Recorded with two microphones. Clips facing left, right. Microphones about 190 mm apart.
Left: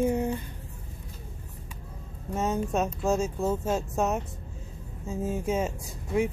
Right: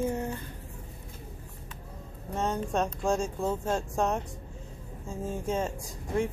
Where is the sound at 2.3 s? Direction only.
5° left (ahead or behind).